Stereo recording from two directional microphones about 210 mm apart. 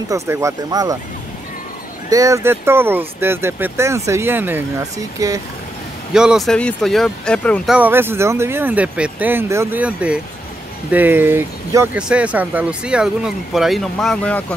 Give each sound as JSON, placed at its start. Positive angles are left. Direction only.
{"t": 0.1, "sound": "speech", "side_deg": -15}
{"t": 2.0, "sound": "speech", "side_deg": -15}
{"t": 6.1, "sound": "speech", "side_deg": 0}